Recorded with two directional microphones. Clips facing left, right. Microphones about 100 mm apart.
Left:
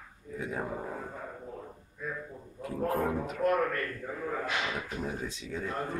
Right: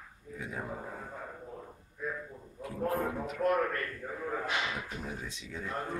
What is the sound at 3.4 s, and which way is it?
Speech, 5° left (ahead or behind).